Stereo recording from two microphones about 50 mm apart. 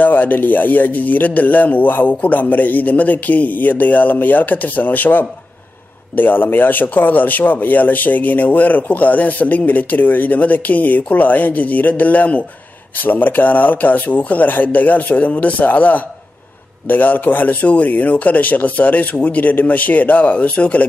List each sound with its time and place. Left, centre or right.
0.0 s speech: left